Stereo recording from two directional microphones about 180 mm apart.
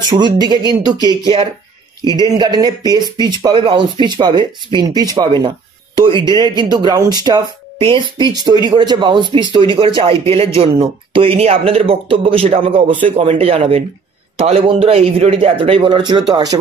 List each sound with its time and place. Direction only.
0.1 s speech: 25° right (ahead or behind)
0.7 s speech: 25° left (ahead or behind)
1.0 s speech: 25° right (ahead or behind)